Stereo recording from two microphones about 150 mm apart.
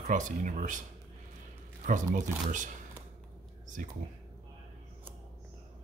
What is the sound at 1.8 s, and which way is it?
Speech, 55° right (ahead or behind).